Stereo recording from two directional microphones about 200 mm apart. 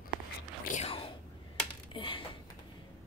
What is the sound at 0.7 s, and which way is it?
Whispering, 30° left (ahead or behind).